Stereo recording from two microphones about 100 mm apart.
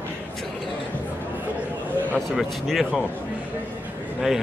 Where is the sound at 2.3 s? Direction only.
Centre (ahead or behind).